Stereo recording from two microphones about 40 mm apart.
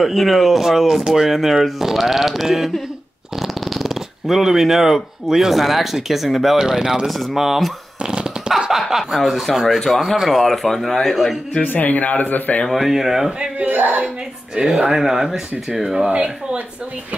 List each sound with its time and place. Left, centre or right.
0.0 s speech: centre
7.1 s speech: centre
8.0 s speech: right; by 11.3 s centre
11.6 s speech: left
12.6 s speech: centre
13.7 s speech: right
14.0 s speech: right
14.9 s speech: centre
16.1 s speech: right